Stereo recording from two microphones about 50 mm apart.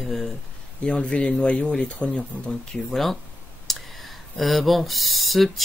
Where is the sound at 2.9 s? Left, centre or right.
Centre.